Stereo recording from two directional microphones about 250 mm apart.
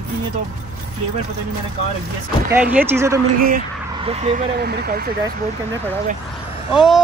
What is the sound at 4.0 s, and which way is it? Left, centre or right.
Speech, right.